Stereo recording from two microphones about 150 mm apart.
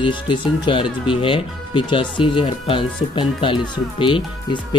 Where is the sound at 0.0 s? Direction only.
35° left (ahead or behind).